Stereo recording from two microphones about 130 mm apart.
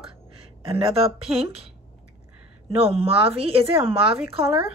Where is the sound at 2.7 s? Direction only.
50° right (ahead or behind).